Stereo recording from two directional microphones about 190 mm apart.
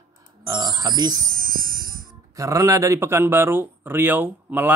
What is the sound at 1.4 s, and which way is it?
Wind chime, 50° right (ahead or behind).